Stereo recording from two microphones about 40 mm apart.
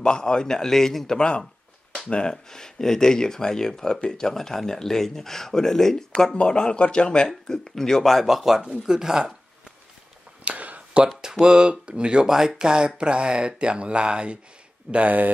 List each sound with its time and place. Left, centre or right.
0.0 s speech: centre
2.3 s speech: centre
6.3 s speech: left; by 9.3 s centre
10.4 s a sound: right
11.1 s speech: centre
12.3 s speech: centre
14.9 s speech: right